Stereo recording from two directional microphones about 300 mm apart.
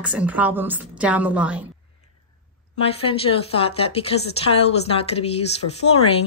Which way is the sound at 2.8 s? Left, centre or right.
Centre.